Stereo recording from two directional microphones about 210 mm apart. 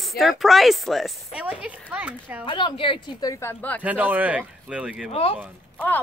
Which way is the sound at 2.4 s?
25° left (ahead or behind).